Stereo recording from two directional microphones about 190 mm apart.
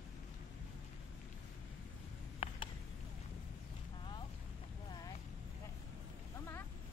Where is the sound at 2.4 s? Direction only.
30° left (ahead or behind).